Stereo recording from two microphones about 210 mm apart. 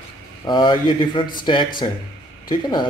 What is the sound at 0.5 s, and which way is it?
Speech, 20° left (ahead or behind).